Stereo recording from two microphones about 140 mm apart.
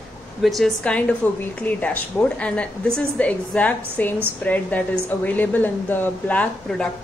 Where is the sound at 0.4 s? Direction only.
Centre (ahead or behind).